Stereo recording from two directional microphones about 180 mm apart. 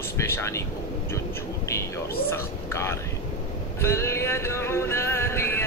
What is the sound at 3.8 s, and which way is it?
Music, 15° left (ahead or behind).